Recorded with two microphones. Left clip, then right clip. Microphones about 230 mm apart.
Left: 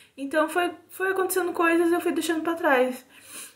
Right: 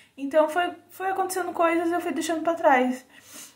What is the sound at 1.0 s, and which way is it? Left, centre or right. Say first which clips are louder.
A woman's voice: left 2 dB; centre.